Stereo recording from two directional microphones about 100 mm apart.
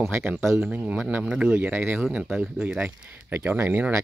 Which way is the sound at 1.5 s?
20° right (ahead or behind).